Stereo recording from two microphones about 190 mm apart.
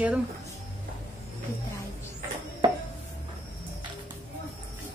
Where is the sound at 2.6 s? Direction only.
25° right (ahead or behind).